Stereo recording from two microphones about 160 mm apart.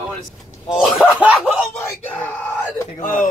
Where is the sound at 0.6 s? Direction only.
5° right (ahead or behind).